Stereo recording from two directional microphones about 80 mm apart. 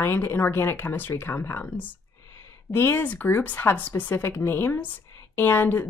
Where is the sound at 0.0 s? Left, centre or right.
Left.